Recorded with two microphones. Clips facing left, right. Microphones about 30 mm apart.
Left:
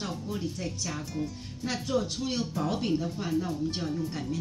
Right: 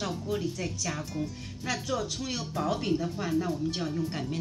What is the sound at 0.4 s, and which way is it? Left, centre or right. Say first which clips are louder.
Speech: right 1 dB; right.